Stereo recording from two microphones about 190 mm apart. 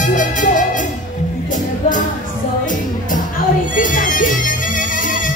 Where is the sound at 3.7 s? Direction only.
45° left (ahead or behind).